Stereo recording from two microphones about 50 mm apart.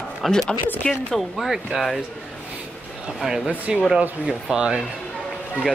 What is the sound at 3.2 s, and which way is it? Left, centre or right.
Speech, centre.